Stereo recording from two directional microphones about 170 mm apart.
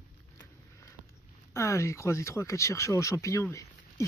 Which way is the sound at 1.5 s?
15° left (ahead or behind).